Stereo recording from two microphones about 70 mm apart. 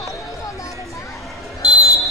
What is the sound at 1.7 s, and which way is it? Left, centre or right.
Basketball bounce, centre.